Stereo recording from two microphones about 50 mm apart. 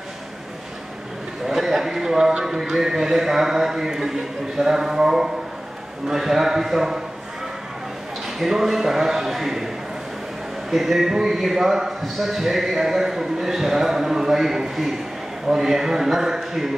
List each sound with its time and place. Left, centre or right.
1.5 s a man's voice: centre
8.4 s a man's voice: centre
10.7 s a man's voice: centre